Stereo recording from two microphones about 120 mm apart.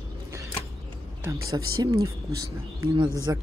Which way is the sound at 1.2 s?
30° right (ahead or behind).